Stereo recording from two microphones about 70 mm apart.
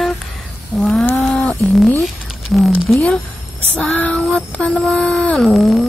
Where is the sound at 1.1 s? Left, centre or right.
Centre.